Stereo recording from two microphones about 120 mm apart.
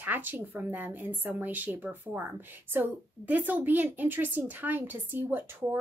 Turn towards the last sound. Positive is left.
turn(degrees=-15)  # may be behind; listen again after turning